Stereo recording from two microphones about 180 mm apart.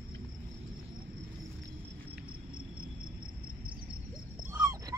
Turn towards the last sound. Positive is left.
turn(degrees=-15)  # may be behind; listen again after turning